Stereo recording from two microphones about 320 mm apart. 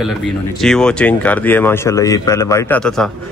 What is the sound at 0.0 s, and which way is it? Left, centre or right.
Speech, centre.